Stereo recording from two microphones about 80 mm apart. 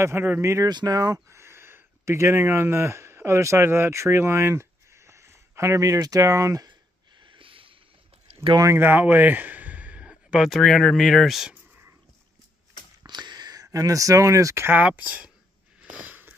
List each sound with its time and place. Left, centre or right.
0.0 s speech: right
0.7 s speech: right
6.7 s snort: right
8.7 s a sound: right
10.5 s speech: centre
13.0 s a sound: right
14.7 s speech: right
15.8 s sniff: centre